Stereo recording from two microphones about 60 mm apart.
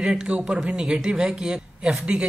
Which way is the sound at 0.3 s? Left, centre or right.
Right.